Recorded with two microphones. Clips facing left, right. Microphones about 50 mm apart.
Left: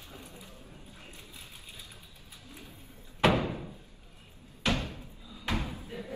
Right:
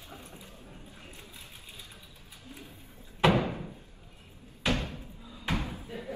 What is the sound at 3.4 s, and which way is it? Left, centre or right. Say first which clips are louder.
Door: right 2 dB; right.